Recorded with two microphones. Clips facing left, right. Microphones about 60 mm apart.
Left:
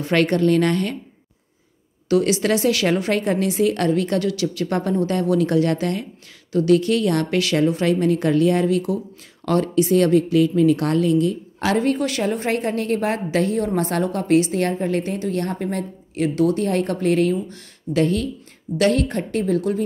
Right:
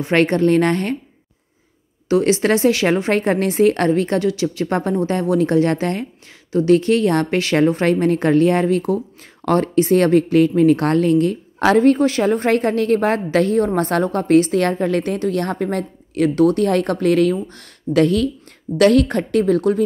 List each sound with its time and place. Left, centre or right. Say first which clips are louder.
0.0 s a woman's voice: right 2 dB; right
2.0 s a woman's voice: right 3 dB; right
7.5 s a woman's voice: right 4 dB; right
17.4 s speech: right 1 dB; right
17.9 s speech: right 4 dB; right
18.8 s a woman's voice: right 5 dB; right